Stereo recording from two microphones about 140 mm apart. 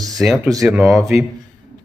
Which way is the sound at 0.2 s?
10° right (ahead or behind).